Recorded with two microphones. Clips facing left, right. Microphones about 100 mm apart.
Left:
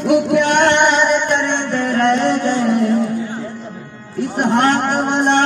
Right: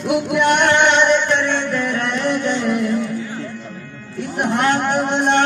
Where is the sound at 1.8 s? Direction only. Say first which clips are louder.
Left 6 dB; 40° left (ahead or behind).